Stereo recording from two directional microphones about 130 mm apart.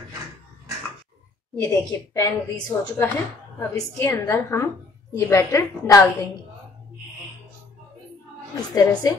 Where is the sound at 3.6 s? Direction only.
20° left (ahead or behind).